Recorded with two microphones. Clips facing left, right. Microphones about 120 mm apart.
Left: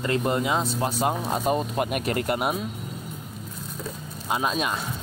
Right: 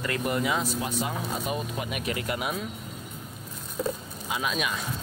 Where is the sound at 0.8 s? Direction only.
40° left (ahead or behind).